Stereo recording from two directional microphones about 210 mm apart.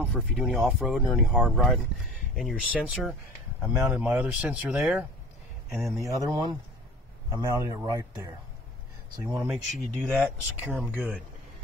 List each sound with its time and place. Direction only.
0.0 s speech: 5° right (ahead or behind)
5.8 s speech: 15° right (ahead or behind)